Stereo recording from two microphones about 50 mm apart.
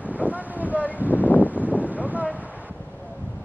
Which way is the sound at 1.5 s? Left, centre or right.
Right.